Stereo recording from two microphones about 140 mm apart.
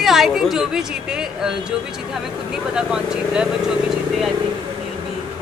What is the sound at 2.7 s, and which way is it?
Speech, 5° right (ahead or behind).